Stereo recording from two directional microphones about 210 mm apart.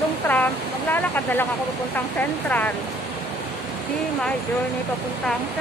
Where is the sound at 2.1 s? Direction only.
10° left (ahead or behind).